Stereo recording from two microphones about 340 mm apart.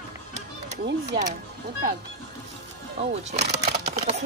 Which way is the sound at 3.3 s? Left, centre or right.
Centre.